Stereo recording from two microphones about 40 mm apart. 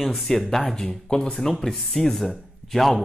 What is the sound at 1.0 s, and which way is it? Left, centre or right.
Speech, left.